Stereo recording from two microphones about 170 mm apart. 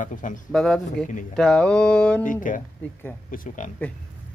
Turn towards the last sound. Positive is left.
turn(degrees=45)  # may be behind; listen again after turning